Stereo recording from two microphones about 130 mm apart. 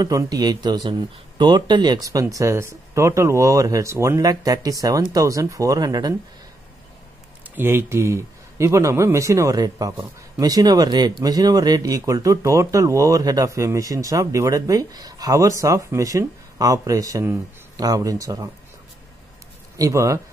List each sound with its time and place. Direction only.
0.0 s speech: 30° right (ahead or behind)
7.5 s speech: 20° right (ahead or behind)
19.8 s speech: 25° right (ahead or behind)